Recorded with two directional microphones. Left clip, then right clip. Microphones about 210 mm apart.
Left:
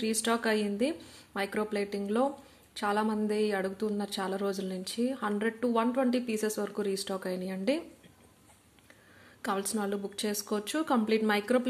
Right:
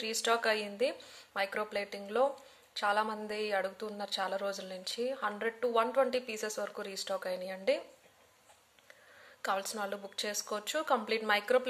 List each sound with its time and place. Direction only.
0.0 s speech: centre (ahead or behind)
9.4 s speech: centre (ahead or behind)